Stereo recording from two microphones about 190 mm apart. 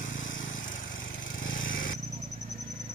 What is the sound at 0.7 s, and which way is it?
Lawn mower, 90° left.